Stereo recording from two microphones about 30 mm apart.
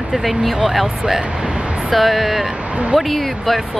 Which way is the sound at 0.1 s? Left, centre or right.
Centre.